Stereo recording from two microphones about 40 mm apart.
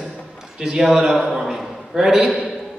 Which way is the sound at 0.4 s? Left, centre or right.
Centre.